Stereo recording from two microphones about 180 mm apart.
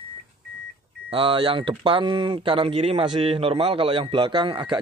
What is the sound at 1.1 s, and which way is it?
Speech, 30° right (ahead or behind).